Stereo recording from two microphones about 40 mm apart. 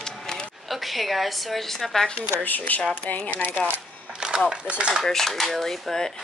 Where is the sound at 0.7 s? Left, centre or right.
Centre.